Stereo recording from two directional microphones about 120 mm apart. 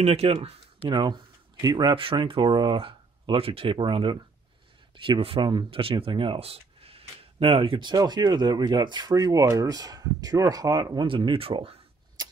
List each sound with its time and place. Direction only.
0.0 s speech: 60° right (ahead or behind)
0.8 s speech: 40° right (ahead or behind)
5.7 s speech: 50° right (ahead or behind)
7.9 s speech: 35° right (ahead or behind); by 11.8 s 55° right (ahead or behind)